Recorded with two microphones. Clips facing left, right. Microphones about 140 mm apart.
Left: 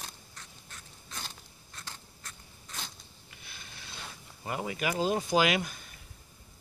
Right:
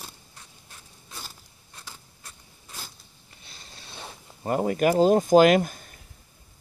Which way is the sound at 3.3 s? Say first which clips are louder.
Right 1 dB; 30° right (ahead or behind).